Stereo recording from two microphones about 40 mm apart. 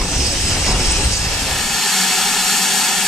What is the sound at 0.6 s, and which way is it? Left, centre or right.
Train, centre.